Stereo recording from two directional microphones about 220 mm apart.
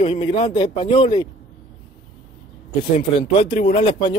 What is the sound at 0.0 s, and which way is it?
Speech, 25° left (ahead or behind).